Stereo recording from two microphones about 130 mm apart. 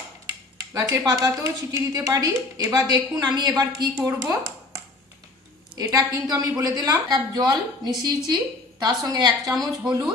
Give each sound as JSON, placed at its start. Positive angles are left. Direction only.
{"t": 0.7, "sound": "a woman's voice", "side_deg": -25}
{"t": 5.8, "sound": "a woman's voice", "side_deg": -30}